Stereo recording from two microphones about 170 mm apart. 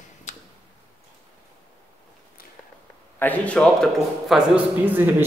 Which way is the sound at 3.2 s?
10° left (ahead or behind).